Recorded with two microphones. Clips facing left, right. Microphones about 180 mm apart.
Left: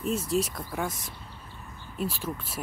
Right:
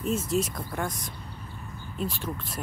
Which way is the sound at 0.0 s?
Centre (ahead or behind).